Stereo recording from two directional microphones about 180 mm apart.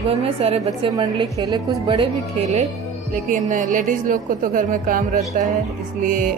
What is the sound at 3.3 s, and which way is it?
Music, 45° right (ahead or behind).